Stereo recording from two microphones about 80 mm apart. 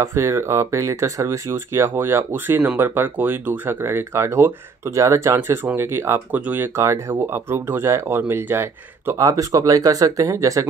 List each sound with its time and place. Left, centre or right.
0.0 s speech: right
6.8 s speech: right
9.2 s speech: right